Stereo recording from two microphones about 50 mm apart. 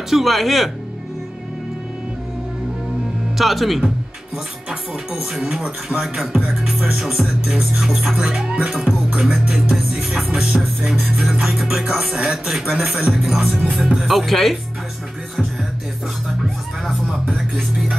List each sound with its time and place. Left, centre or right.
0.1 s music: centre
3.3 s music: centre
4.6 s speech: centre
5.9 s music: centre
8.2 s speech: centre
8.6 s speech: centre
9.2 s music: centre
12.4 s speech: centre
13.2 s music: centre
16.8 s music: centre